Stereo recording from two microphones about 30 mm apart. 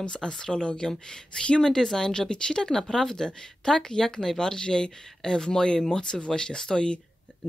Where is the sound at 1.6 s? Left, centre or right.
Left.